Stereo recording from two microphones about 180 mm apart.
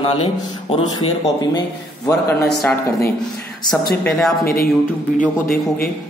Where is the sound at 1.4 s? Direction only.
20° left (ahead or behind).